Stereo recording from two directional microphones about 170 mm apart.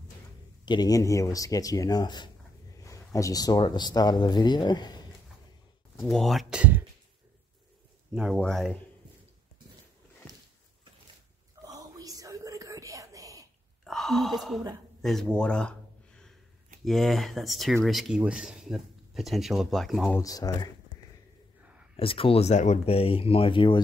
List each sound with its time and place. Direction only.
0.7 s speech: 25° left (ahead or behind)
5.9 s speech: centre (ahead or behind)
8.1 s speech: 5° right (ahead or behind)
11.6 s a sound: 20° right (ahead or behind)
13.8 s speech: centre (ahead or behind)
15.0 s a sound: centre (ahead or behind)
16.8 s speech: centre (ahead or behind)
20.2 s speech: 20° left (ahead or behind)
21.9 s speech: 35° left (ahead or behind)